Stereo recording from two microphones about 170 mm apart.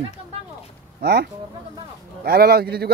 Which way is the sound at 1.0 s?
70° right (ahead or behind).